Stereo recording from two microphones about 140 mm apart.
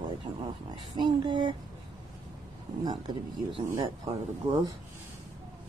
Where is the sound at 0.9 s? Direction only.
35° right (ahead or behind).